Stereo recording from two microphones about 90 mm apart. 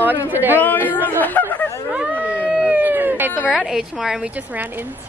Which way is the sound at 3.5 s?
5° right (ahead or behind).